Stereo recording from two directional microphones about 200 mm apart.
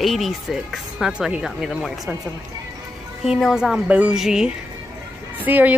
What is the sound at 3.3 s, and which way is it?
Speech, centre (ahead or behind).